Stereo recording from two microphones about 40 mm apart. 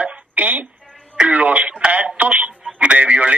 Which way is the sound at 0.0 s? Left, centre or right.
Right.